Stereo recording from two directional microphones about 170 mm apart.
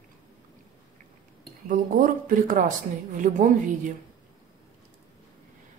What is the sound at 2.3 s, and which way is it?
A woman's voice, 55° right (ahead or behind).